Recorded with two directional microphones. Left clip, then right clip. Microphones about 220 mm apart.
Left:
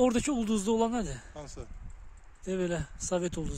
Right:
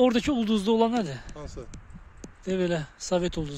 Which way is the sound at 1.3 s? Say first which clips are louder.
Right 4 dB; 55° left (ahead or behind).